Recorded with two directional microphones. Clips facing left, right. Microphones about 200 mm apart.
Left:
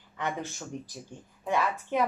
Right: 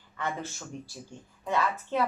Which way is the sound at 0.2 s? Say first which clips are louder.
Left 1 dB; 15° left (ahead or behind).